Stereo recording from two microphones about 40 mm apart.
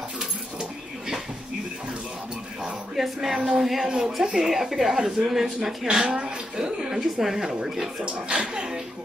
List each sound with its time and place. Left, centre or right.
0.6 s a sound: centre
3.0 s speech: centre
8.0 s speech: right